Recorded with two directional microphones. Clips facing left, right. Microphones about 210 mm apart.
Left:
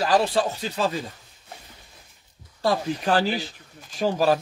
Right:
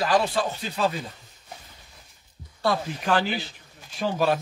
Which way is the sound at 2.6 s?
35° left (ahead or behind).